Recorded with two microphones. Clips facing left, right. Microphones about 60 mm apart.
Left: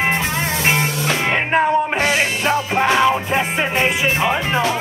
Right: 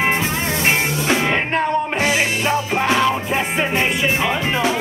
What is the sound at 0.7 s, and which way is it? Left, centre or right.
Music, centre.